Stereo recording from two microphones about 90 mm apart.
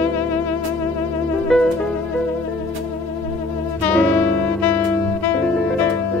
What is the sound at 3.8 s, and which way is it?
Music, 15° left (ahead or behind).